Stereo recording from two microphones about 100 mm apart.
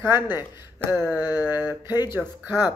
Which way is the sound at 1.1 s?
40° left (ahead or behind).